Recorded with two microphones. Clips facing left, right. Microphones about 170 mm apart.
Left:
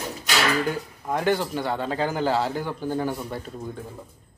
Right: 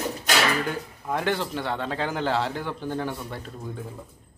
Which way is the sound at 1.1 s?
5° left (ahead or behind).